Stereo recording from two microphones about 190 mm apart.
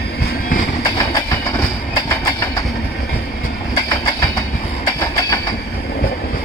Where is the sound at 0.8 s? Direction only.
20° left (ahead or behind).